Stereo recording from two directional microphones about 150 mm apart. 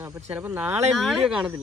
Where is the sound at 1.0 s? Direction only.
Centre (ahead or behind).